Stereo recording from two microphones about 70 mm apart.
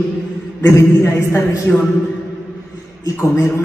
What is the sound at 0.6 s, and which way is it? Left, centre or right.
A man's voice, left.